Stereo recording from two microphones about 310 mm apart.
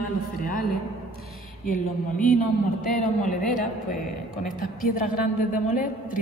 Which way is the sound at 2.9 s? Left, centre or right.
Left.